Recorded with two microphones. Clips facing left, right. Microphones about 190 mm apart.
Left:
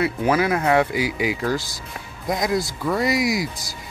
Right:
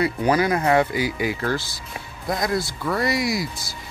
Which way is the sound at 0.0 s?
5° left (ahead or behind).